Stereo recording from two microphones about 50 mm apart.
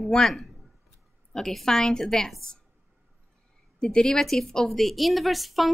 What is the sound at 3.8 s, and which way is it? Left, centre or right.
A woman's voice, centre.